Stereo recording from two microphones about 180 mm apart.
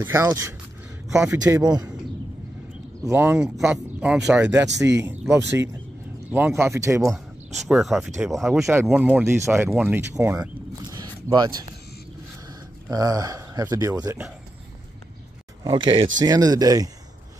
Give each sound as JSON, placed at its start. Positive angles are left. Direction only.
{"t": 0.0, "sound": "speech", "side_deg": -15}
{"t": 3.1, "sound": "speech", "side_deg": -10}
{"t": 6.3, "sound": "speech", "side_deg": -10}
{"t": 7.1, "sound": "speech", "side_deg": 0}
{"t": 10.8, "sound": "zipper", "side_deg": -20}
{"t": 12.9, "sound": "speech", "side_deg": -20}
{"t": 15.6, "sound": "speech", "side_deg": -25}